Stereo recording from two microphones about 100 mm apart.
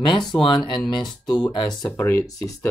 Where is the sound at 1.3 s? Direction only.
50° left (ahead or behind).